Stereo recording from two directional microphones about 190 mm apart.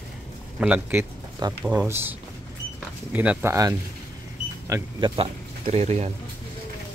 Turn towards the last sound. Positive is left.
turn(degrees=-35)  # may be behind; listen again after turning